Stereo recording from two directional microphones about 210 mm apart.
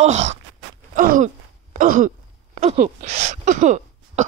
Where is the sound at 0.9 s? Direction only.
40° right (ahead or behind).